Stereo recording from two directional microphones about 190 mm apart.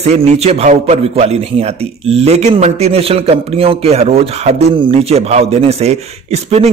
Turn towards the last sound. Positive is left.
turn(degrees=-35)  # may be behind; listen again after turning